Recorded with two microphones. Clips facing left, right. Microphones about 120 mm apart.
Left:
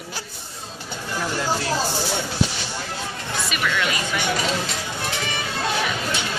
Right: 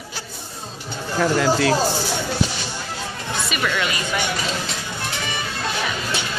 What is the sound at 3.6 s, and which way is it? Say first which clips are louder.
Speech: even; 5° right (ahead or behind).